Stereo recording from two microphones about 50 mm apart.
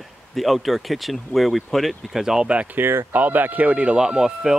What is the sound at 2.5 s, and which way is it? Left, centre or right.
Speech, right.